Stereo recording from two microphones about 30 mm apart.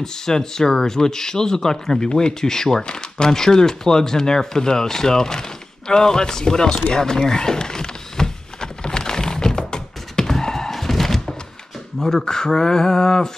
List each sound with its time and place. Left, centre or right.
0.0 s speech: centre
2.0 s speech: left
2.4 s speech: centre
6.9 s power windows: left
10.4 s a sound: centre
10.7 s thunk: centre
12.0 s speech: centre